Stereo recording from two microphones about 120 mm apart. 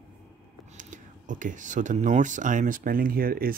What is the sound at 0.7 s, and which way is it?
Speech, 90° right.